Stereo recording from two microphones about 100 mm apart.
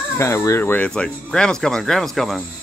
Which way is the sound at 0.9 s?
5° left (ahead or behind).